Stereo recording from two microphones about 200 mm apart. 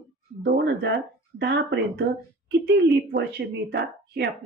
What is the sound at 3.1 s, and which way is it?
Speech, 55° right (ahead or behind).